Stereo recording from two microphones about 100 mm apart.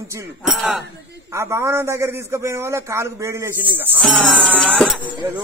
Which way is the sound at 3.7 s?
20° right (ahead or behind).